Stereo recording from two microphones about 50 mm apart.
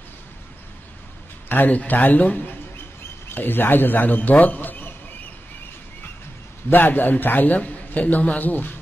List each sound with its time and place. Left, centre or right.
1.5 s a man's voice: left
3.3 s a man's voice: left
6.7 s a man's voice: left